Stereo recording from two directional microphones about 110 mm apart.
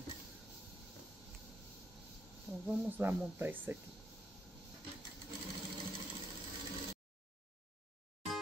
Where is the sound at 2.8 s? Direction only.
20° right (ahead or behind).